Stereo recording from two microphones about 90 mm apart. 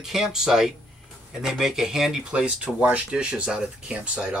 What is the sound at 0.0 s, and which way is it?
Speech, 5° right (ahead or behind).